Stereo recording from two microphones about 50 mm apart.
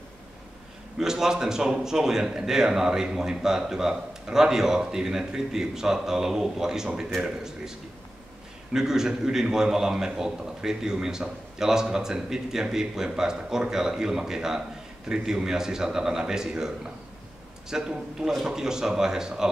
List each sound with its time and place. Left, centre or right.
0.9 s a man's voice: centre
8.7 s a man's voice: centre